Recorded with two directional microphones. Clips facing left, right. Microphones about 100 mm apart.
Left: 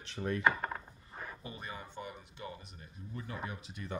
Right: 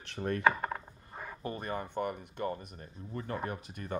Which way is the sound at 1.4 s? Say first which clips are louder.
Right 8 dB; 50° right (ahead or behind).